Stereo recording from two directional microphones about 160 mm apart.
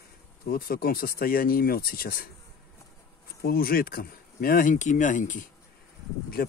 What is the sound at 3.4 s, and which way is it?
Speech, 65° left (ahead or behind).